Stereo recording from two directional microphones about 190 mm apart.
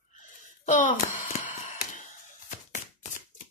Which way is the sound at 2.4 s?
40° left (ahead or behind).